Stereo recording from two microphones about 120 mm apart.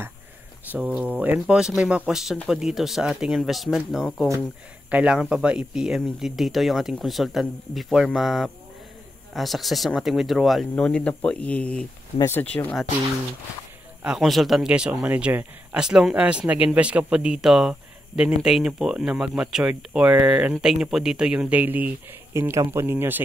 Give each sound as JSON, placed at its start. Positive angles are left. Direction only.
{"t": 0.7, "sound": "speech", "side_deg": -5}
{"t": 14.0, "sound": "speech", "side_deg": 0}